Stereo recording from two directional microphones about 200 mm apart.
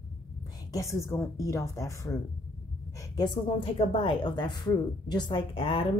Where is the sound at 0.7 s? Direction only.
15° left (ahead or behind).